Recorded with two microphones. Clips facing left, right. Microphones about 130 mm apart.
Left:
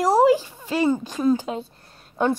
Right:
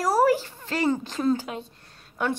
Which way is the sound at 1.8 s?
35° left (ahead or behind).